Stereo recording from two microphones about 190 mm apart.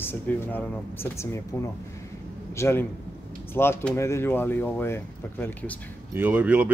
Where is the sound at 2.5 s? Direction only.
15° left (ahead or behind).